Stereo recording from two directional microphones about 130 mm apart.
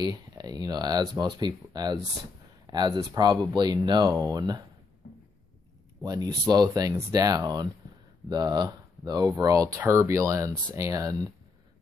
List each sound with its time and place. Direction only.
0.0 s speech: 30° right (ahead or behind)
6.0 s speech: 30° right (ahead or behind)